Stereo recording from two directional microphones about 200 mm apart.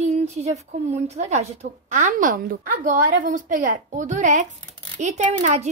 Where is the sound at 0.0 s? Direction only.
35° right (ahead or behind).